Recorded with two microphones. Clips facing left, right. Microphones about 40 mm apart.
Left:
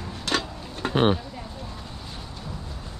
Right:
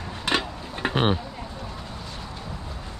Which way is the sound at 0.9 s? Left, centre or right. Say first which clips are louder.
Left 3 dB; centre.